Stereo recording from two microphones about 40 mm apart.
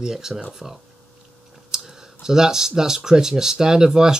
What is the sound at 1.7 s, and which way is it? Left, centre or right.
Speech, centre.